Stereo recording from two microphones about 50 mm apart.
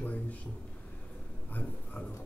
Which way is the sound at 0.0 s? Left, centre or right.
Left.